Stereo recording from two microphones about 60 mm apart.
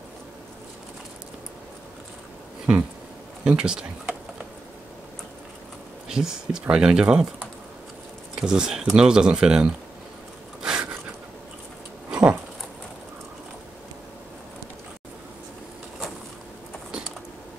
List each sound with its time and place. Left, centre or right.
3.4 s speech: centre
6.0 s speech: centre
8.4 s speech: centre
10.6 s a sound: centre
12.1 s dog: centre